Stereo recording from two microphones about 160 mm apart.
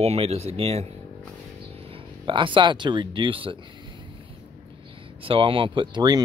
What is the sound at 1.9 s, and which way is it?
Speech, 30° right (ahead or behind).